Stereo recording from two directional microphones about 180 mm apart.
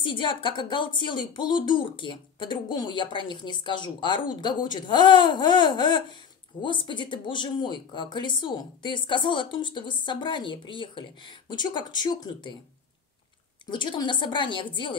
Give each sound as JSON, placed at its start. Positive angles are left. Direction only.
{"t": 0.0, "sound": "speech", "side_deg": 25}
{"t": 13.7, "sound": "speech", "side_deg": 25}